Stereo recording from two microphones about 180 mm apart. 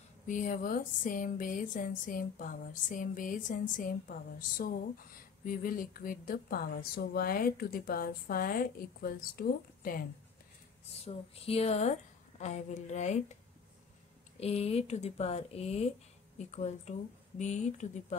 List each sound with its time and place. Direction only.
0.3 s speech: 45° left (ahead or behind)
11.1 s a woman's voice: 35° left (ahead or behind)
14.4 s a woman's voice: 35° left (ahead or behind)